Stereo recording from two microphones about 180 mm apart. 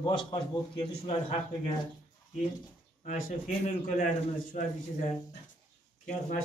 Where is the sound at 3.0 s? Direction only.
40° left (ahead or behind).